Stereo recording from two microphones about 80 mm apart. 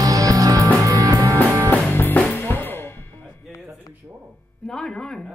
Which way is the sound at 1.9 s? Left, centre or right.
Left.